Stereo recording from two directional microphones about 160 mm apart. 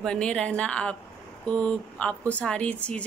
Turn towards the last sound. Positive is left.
turn(degrees=10)  # may be behind; listen again after turning